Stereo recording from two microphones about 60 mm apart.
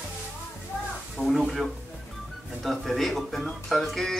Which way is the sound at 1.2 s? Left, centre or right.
Right.